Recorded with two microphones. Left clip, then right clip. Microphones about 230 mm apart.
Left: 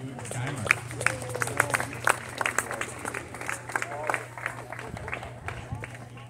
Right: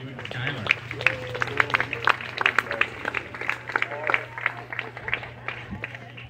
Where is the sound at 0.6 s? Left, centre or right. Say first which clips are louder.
Right 2 dB; left.